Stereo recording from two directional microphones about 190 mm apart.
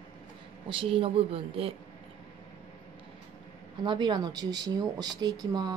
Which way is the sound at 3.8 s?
25° right (ahead or behind).